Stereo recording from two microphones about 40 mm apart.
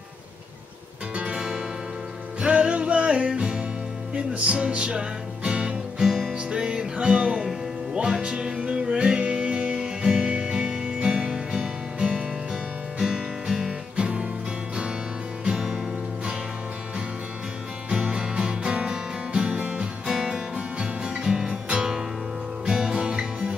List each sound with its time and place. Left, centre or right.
1.1 s music: right
5.9 s music: centre
15.4 s music: centre
17.9 s music: centre